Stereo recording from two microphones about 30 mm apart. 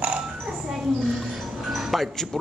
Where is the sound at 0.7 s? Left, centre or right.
Centre.